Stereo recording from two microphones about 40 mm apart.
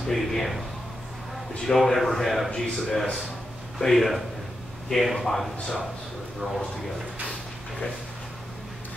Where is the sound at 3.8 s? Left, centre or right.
Centre.